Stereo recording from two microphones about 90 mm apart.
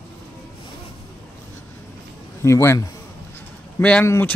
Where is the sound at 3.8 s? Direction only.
15° left (ahead or behind).